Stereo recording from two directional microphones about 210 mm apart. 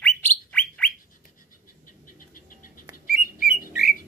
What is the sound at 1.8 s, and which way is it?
Bird, 40° left (ahead or behind).